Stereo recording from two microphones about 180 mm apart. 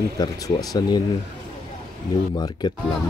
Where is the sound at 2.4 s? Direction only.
25° left (ahead or behind).